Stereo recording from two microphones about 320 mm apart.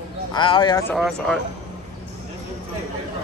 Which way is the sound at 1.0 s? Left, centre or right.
Centre.